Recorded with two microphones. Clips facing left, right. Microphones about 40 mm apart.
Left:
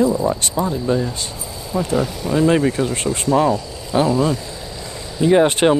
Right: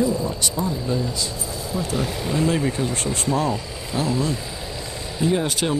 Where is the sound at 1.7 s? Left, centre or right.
Left.